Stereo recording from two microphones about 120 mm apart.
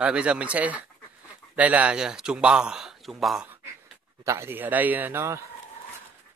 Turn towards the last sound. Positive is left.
turn(degrees=-25)  # may be behind; listen again after turning